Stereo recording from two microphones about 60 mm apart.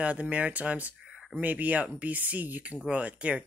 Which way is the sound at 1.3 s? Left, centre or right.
Right.